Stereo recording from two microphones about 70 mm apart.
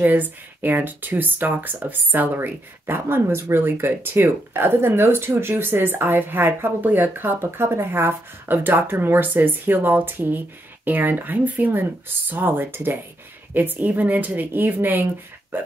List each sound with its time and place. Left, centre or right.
0.0 s speech: right